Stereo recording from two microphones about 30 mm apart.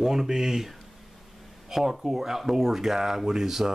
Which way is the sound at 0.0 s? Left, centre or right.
Centre.